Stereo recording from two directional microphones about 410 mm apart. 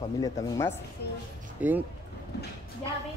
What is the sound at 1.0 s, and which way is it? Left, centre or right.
Speech, left.